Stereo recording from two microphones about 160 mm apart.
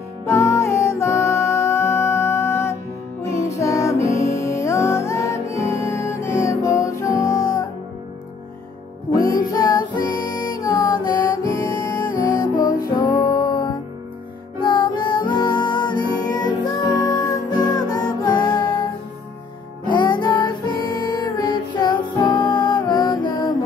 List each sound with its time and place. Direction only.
0.3 s music: 20° left (ahead or behind)
9.5 s music: 25° left (ahead or behind)
11.8 s music: 55° left (ahead or behind)
12.7 s music: 25° left (ahead or behind)
19.9 s music: 30° left (ahead or behind)